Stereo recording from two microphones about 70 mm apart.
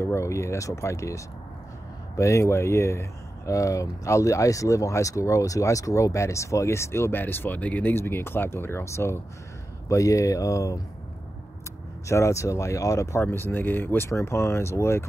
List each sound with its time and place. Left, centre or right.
0.0 s speech: left
7.9 s speech: left
12.1 s speech: left